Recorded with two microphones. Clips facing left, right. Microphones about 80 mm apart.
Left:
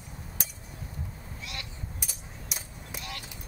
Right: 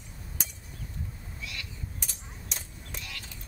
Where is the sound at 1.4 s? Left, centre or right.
Left.